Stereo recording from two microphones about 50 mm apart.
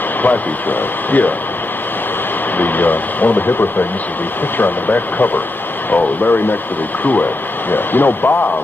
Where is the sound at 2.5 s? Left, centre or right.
Left.